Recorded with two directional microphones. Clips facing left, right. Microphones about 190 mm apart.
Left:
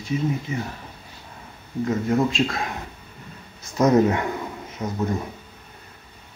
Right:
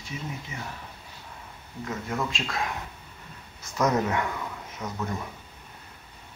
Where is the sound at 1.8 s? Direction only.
35° left (ahead or behind).